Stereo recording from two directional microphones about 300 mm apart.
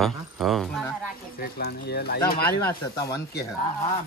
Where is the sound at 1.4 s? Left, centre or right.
Left.